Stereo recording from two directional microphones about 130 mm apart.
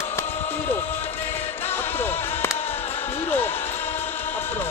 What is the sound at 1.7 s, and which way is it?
Music, 15° left (ahead or behind).